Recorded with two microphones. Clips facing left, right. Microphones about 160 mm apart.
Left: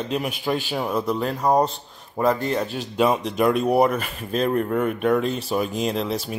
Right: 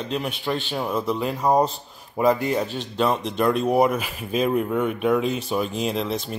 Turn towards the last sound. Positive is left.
turn(degrees=0)  # may be behind; listen again after turning